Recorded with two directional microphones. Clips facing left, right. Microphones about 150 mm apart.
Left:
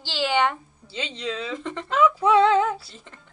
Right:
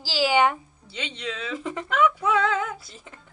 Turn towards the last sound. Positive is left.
turn(degrees=-5)  # may be behind; listen again after turning